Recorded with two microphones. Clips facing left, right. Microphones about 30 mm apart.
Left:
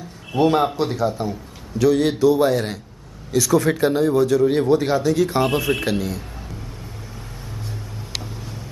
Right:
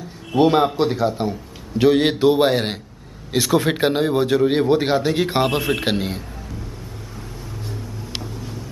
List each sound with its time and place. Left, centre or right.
0.4 s speech: right
1.8 s a man's voice: right